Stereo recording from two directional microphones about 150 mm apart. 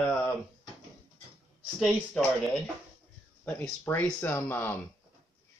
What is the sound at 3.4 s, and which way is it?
Speech, 10° left (ahead or behind).